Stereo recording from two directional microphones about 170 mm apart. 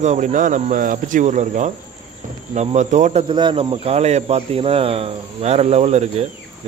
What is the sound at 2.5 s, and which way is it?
Speech, 40° right (ahead or behind).